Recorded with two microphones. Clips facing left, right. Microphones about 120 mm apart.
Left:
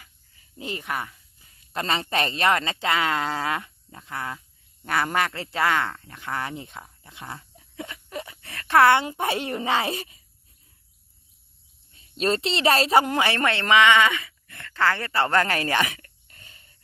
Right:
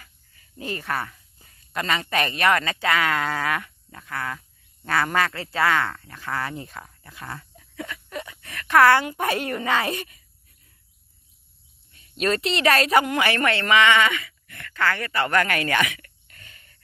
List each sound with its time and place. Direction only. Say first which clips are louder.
0.0 s a sound: right 2 dB; 20° left (ahead or behind)
1.7 s speech: right 1 dB; 30° left (ahead or behind)
11.9 s a woman's voice: even; 30° left (ahead or behind)